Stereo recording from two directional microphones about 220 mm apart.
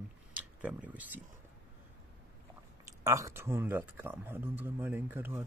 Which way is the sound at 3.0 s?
15° right (ahead or behind).